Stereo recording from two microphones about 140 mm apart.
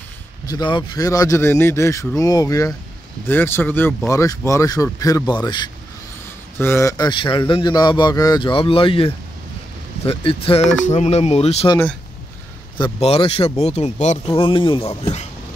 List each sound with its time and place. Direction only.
0.5 s speech: 35° left (ahead or behind)
6.6 s speech: 20° left (ahead or behind)
7.1 s speech: 35° left (ahead or behind)
13.0 s speech: 45° left (ahead or behind)
14.2 s speech: 40° left (ahead or behind)